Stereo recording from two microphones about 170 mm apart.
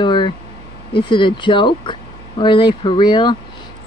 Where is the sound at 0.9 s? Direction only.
30° left (ahead or behind).